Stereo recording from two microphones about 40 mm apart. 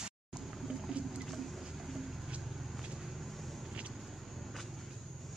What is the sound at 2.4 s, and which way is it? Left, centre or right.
Vehicle, centre.